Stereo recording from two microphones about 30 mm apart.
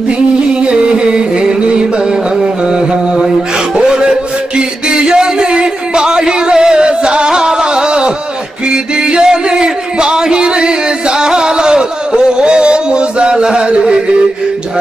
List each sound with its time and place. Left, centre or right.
0.6 s music: right
3.7 s a sound: right
7.2 s music: right